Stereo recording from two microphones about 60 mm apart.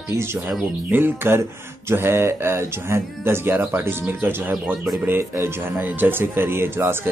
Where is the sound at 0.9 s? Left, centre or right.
Right.